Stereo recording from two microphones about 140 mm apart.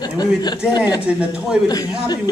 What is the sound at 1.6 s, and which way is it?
Speech, 25° left (ahead or behind).